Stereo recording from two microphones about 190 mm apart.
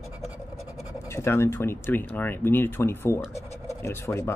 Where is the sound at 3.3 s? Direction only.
35° left (ahead or behind).